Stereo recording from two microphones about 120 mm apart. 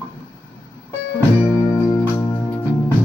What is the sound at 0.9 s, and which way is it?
Music, 30° left (ahead or behind).